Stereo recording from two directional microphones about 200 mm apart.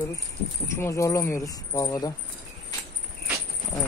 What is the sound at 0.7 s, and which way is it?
Speech, 15° left (ahead or behind).